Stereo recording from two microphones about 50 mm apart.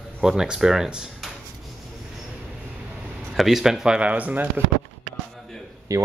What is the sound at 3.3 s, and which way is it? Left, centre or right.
Speech, centre.